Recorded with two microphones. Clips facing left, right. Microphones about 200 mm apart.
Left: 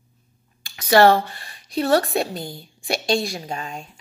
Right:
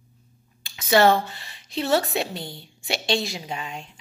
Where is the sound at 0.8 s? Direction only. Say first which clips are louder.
Left 3 dB; 20° right (ahead or behind).